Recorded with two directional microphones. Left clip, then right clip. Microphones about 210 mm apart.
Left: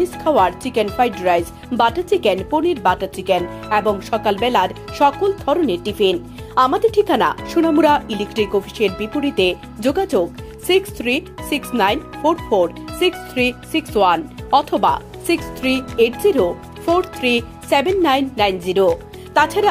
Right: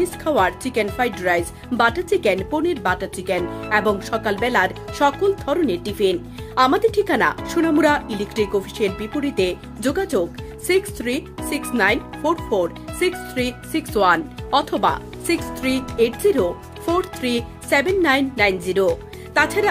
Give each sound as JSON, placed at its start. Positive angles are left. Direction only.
{"t": 0.0, "sound": "speech", "side_deg": 10}